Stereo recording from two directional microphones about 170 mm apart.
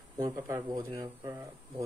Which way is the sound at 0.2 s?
20° right (ahead or behind).